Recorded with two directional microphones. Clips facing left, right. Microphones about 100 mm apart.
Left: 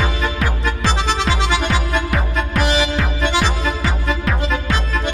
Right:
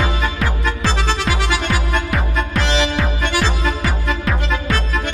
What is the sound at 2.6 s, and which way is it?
Music, 15° left (ahead or behind).